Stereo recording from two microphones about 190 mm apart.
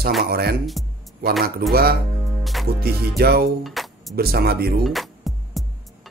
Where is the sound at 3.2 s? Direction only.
55° right (ahead or behind).